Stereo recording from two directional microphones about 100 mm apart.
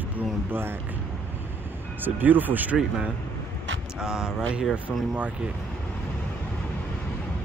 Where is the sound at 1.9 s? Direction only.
20° right (ahead or behind).